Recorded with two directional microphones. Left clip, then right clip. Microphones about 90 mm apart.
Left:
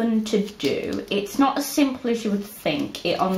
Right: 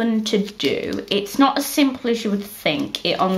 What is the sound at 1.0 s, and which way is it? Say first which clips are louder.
Speech: right 4 dB; 35° right (ahead or behind).